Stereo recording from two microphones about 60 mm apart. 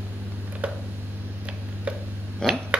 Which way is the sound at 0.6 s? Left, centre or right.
Right.